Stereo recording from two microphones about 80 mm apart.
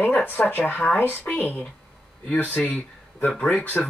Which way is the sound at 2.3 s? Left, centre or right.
Left.